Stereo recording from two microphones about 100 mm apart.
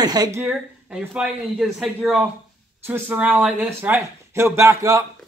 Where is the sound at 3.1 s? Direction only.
15° right (ahead or behind); by 5.0 s 35° right (ahead or behind).